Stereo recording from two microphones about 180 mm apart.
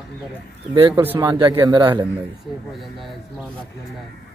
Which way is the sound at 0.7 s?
30° right (ahead or behind).